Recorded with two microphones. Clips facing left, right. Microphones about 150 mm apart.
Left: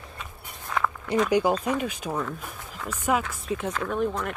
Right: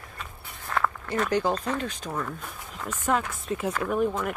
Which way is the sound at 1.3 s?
10° left (ahead or behind).